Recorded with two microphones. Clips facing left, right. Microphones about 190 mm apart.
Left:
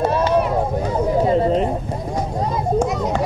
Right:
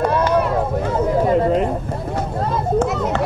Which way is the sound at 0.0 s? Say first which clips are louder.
Even; 30° left (ahead or behind).